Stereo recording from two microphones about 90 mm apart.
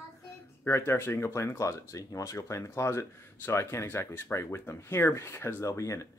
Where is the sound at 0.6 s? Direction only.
30° left (ahead or behind).